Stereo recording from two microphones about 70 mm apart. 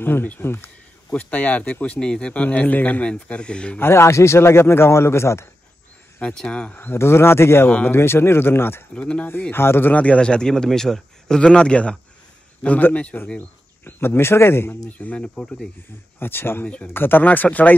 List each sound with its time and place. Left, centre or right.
0.0 s a man's voice: left
1.1 s speech: left
3.8 s a man's voice: left
6.3 s a man's voice: centre
6.7 s a man's voice: left
8.9 s a man's voice: centre
9.5 s a man's voice: left
14.9 s a man's voice: left
16.2 s a man's voice: left